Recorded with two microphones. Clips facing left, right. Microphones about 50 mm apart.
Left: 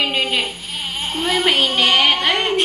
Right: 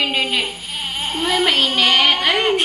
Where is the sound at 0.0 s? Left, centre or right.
Centre.